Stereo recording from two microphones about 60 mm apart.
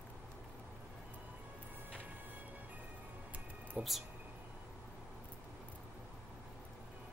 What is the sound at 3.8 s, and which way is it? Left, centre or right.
Speech, centre.